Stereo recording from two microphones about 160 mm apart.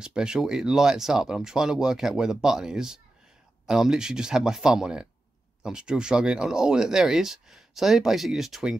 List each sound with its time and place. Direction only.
0.0 s speech: 5° right (ahead or behind)